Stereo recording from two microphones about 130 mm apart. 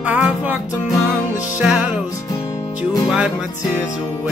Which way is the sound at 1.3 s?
70° left (ahead or behind).